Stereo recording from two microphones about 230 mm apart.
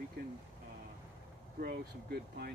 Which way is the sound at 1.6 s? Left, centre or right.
Right.